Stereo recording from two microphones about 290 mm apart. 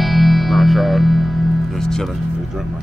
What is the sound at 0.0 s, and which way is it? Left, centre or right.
Music, centre.